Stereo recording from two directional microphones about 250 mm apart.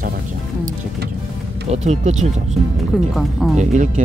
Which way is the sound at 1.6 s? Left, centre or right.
Right.